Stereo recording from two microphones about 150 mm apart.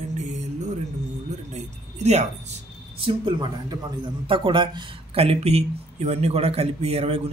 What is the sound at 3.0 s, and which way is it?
Speech, 30° right (ahead or behind).